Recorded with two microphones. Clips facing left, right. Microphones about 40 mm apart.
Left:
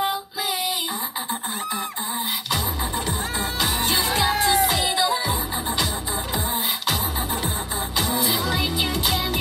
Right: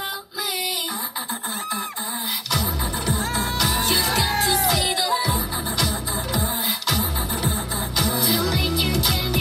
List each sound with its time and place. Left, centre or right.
3.5 s music: left
4.1 s music: centre
4.6 s music: left
8.0 s music: left